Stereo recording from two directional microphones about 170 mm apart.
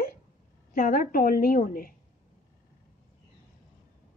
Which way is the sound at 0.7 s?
55° left (ahead or behind).